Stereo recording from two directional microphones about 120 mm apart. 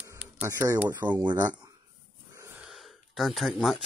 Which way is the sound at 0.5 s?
20° right (ahead or behind).